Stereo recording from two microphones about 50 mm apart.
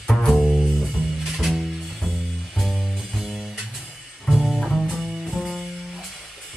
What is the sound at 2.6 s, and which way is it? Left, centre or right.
Music, centre.